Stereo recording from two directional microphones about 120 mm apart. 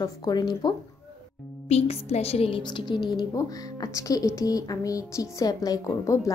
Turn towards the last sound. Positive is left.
turn(degrees=25)  # may be behind; listen again after turning